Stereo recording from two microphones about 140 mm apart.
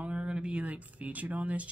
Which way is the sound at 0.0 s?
10° right (ahead or behind).